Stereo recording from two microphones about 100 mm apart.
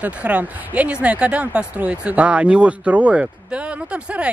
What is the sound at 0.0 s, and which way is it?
Speech, 15° right (ahead or behind).